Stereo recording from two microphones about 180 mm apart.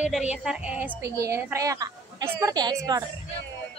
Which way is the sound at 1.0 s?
15° right (ahead or behind).